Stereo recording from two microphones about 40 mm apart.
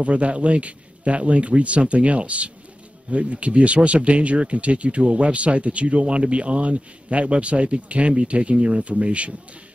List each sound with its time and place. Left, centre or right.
0.0 s speech: right